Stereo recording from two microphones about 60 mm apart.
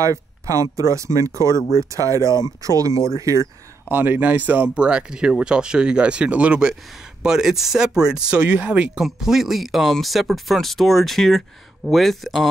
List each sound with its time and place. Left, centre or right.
0.0 s speech: right
3.9 s speech: right
4.7 s speech: centre
7.2 s speech: centre
9.0 s speech: centre